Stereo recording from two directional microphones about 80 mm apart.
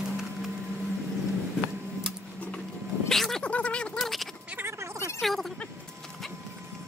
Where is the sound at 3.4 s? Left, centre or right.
Centre.